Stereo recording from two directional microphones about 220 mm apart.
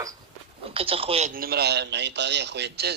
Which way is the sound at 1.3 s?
45° right (ahead or behind).